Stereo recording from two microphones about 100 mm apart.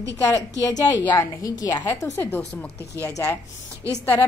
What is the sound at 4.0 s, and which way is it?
Speech, 20° left (ahead or behind).